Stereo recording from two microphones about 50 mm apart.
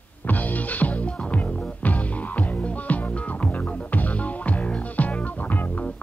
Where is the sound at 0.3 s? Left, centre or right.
Left.